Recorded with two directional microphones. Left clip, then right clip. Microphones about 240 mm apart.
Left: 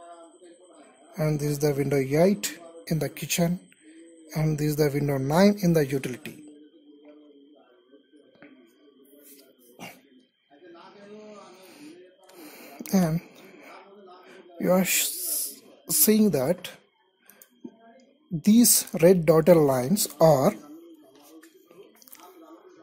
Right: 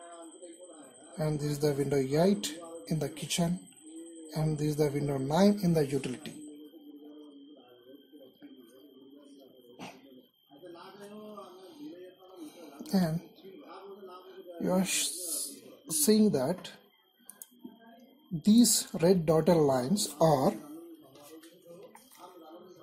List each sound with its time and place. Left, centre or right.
1.1 s speech: left
12.7 s a sound: left
14.6 s speech: left
18.9 s speech: left